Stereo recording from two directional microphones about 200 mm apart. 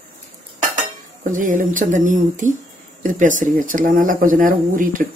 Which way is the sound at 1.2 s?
40° right (ahead or behind).